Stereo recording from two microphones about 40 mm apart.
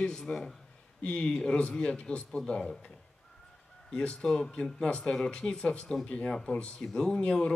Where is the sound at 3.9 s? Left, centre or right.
Left.